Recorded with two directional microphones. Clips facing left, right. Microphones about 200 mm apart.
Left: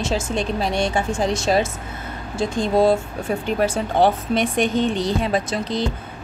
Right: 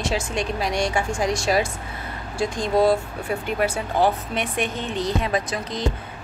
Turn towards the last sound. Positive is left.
turn(degrees=30)  # may be behind; listen again after turning